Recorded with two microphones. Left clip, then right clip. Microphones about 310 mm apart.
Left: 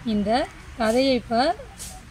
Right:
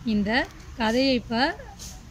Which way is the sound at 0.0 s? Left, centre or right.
Centre.